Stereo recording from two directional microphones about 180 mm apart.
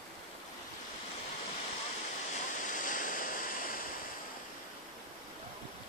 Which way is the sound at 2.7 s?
45° left (ahead or behind).